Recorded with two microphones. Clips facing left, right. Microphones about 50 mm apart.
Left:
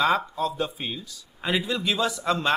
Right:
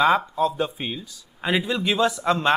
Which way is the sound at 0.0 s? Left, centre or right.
Centre.